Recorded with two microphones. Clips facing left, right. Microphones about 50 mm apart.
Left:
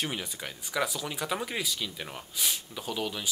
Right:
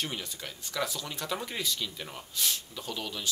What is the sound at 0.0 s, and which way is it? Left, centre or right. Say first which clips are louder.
Speech: left 2 dB; centre.